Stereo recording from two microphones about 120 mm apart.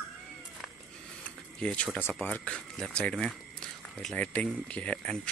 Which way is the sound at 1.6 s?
10° left (ahead or behind).